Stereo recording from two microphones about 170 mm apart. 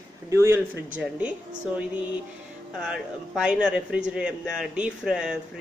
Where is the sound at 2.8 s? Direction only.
5° right (ahead or behind).